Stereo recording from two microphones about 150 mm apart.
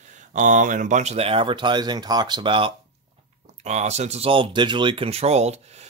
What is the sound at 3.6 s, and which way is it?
Speech, 50° right (ahead or behind).